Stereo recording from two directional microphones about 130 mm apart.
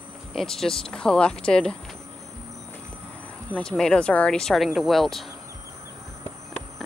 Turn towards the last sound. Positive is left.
turn(degrees=0)  # may be behind; listen again after turning